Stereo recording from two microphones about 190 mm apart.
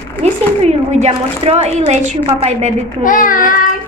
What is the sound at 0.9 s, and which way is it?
A woman's voice, 35° right (ahead or behind).